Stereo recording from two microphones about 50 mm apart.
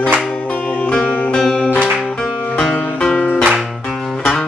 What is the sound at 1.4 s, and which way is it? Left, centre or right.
Music, centre.